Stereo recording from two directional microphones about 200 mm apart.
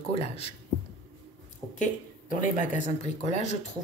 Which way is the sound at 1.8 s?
40° left (ahead or behind).